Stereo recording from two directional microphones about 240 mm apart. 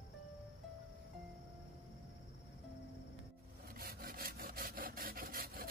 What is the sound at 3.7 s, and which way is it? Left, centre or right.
Wood, right.